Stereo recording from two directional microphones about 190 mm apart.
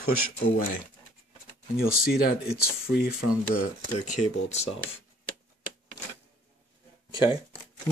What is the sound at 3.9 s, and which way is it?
Speech, 40° left (ahead or behind).